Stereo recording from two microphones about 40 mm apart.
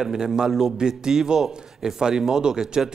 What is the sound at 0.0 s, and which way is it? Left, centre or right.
Speech, centre.